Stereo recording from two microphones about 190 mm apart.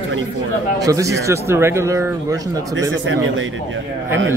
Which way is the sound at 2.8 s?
80° right.